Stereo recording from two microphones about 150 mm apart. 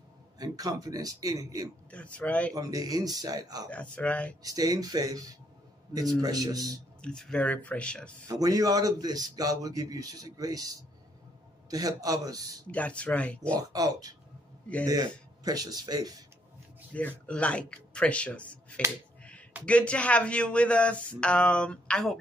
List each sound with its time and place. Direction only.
0.4 s a man's voice: 25° right (ahead or behind)
1.9 s speech: 10° left (ahead or behind)
2.5 s a man's voice: 25° right (ahead or behind)
3.7 s speech: 10° left (ahead or behind)
4.4 s a man's voice: 25° right (ahead or behind)
7.0 s speech: 5° left (ahead or behind)
8.3 s a man's voice: 25° right (ahead or behind)
12.6 s speech: 10° left (ahead or behind)
13.6 s a man's voice: 25° right (ahead or behind)
16.9 s speech: 10° left (ahead or behind)